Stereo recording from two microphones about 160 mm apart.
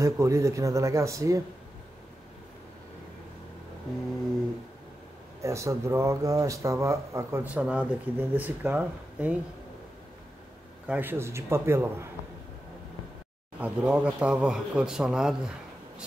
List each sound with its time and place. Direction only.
0.0 s speech: 20° right (ahead or behind)
5.4 s speech: 20° right (ahead or behind)
10.9 s speech: 10° right (ahead or behind)
13.6 s speech: 10° right (ahead or behind)